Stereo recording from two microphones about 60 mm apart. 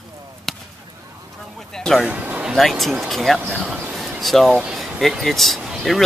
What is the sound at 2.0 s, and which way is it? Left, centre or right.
Speech, centre.